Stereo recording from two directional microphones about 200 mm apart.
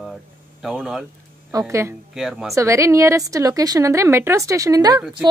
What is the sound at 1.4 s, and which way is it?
Speech, 15° right (ahead or behind).